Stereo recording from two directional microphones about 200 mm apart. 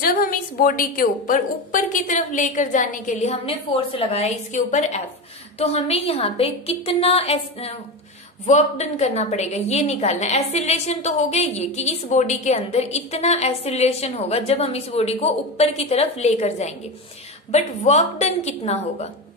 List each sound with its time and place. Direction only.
0.0 s a woman's voice: 45° left (ahead or behind)